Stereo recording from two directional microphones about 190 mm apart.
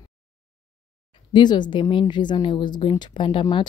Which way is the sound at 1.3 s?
25° left (ahead or behind).